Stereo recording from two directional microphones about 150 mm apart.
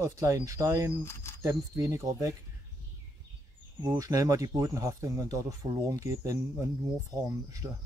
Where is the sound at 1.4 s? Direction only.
20° right (ahead or behind).